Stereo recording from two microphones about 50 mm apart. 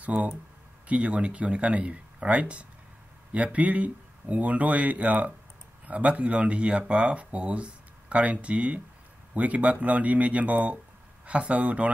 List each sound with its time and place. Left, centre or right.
0.0 s speech: right